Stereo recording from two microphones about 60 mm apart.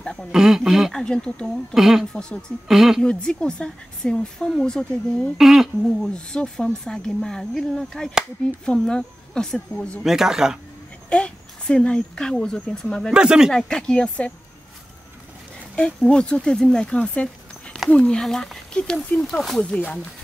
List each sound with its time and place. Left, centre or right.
0.0 s speech: centre
0.3 s speech: centre
0.9 s speech: centre
1.7 s speech: centre
2.1 s speech: centre
2.7 s speech: centre
3.0 s speech: centre
5.4 s speech: centre
6.0 s speech: centre
10.0 s speech: centre
11.1 s speech: centre
13.1 s speech: centre
13.5 s speech: centre
15.7 s speech: centre